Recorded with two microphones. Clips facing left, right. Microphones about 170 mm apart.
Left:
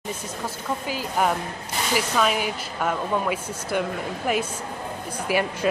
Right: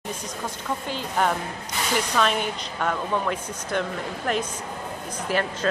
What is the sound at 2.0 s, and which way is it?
Speech, 5° left (ahead or behind).